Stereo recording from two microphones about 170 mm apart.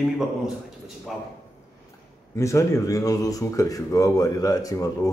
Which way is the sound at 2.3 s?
15° left (ahead or behind).